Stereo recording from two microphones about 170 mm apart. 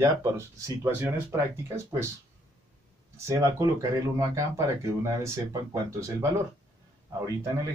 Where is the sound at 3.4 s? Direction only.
20° right (ahead or behind).